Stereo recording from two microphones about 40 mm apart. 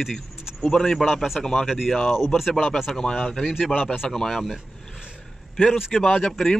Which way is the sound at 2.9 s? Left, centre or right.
Centre.